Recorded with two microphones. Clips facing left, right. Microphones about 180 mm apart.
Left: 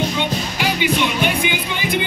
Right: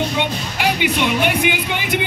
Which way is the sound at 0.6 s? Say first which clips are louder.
Right 2 dB; 60° right (ahead or behind).